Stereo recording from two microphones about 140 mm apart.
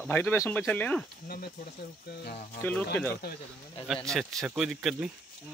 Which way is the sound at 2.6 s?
10° left (ahead or behind).